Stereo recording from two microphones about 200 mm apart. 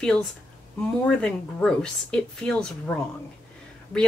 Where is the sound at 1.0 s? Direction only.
5° left (ahead or behind).